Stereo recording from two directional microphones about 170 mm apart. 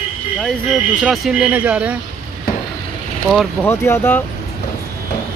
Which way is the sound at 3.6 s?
15° left (ahead or behind).